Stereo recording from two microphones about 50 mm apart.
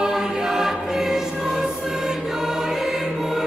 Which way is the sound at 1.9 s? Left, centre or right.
Centre.